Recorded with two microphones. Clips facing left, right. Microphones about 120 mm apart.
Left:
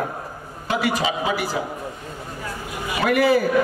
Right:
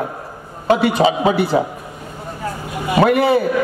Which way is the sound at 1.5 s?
35° right (ahead or behind).